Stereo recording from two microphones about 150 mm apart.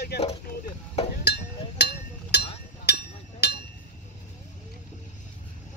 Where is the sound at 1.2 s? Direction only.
90° left.